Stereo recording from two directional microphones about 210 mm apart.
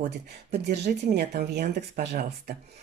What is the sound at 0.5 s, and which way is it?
Speech, 50° right (ahead or behind).